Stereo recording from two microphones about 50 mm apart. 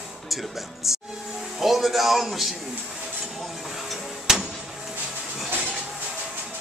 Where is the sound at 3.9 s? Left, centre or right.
Centre.